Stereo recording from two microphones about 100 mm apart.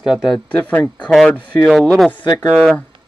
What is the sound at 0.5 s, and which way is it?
Speech, 15° left (ahead or behind).